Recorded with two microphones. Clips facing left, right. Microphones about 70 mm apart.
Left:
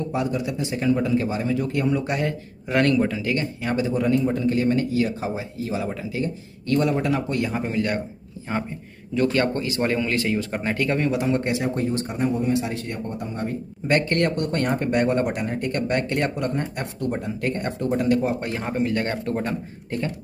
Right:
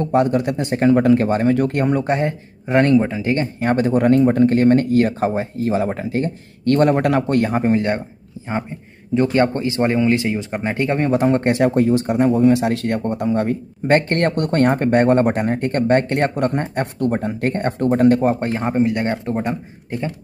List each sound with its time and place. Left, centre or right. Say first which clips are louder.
0.0 s speech: right 8 dB; right
2.0 s speech: right 6 dB; right
3.6 s speech: right 8 dB; right
9.1 s speech: right 5 dB; right
11.1 s speech: right 6 dB; right
11.6 s speech: right 9 dB; right
13.8 s speech: right 5 dB; right; by 20.1 s centre